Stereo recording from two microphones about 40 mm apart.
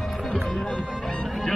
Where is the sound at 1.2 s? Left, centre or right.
Centre.